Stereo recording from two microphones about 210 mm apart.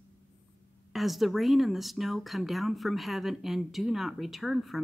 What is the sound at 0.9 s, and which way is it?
A woman's voice, centre (ahead or behind).